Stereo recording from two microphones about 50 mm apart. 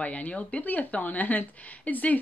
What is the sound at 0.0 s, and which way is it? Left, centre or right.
Speech, left.